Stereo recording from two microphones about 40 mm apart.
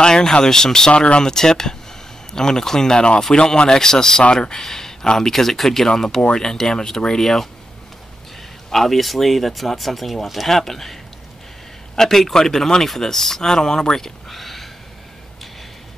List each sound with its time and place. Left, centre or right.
0.0 s speech: centre
8.6 s speech: centre